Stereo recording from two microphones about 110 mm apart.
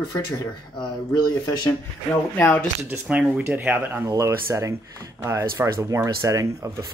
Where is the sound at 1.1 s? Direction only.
30° left (ahead or behind).